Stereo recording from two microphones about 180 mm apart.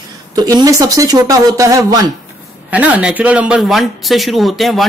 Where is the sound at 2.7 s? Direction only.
5° right (ahead or behind).